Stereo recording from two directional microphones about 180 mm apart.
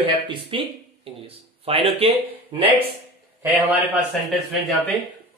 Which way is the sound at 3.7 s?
10° right (ahead or behind).